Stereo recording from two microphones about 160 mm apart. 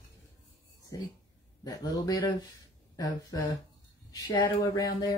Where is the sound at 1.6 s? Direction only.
25° left (ahead or behind).